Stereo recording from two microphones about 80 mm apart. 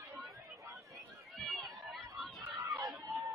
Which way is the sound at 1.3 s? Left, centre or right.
Centre.